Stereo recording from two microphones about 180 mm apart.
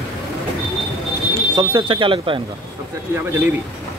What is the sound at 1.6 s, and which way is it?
Speech, 25° right (ahead or behind).